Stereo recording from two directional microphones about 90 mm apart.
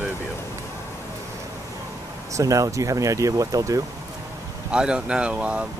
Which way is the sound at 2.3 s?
40° right (ahead or behind).